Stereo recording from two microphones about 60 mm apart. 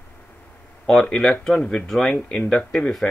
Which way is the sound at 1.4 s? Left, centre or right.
Centre.